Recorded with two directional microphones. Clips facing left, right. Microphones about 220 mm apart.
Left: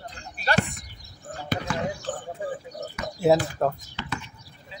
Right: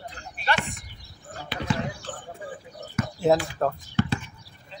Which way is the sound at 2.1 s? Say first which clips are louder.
Left 6 dB; 45° left (ahead or behind).